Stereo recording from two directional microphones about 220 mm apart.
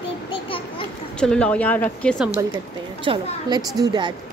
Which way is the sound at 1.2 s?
5° left (ahead or behind).